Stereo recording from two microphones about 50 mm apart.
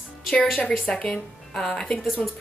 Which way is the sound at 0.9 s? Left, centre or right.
Left.